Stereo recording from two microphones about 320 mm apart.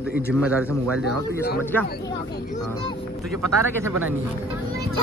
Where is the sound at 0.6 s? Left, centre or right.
Centre.